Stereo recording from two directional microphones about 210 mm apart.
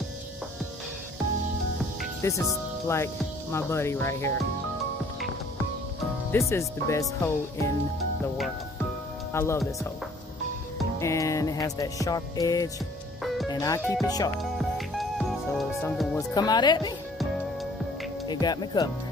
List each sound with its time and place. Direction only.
2.2 s speech: 15° left (ahead or behind)
3.5 s music: 10° left (ahead or behind)
6.5 s music: 15° left (ahead or behind)
9.3 s speech: 10° left (ahead or behind)
11.0 s music: 15° left (ahead or behind)
14.4 s music: centre (ahead or behind)
16.3 s speech: 20° left (ahead or behind)
18.2 s speech: 20° left (ahead or behind)